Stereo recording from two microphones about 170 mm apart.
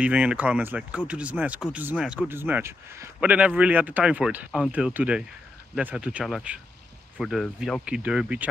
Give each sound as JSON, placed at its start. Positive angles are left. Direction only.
{"t": 0.0, "sound": "speech", "side_deg": -5}